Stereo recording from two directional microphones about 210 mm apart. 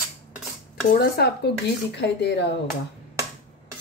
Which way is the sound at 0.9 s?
50° left (ahead or behind).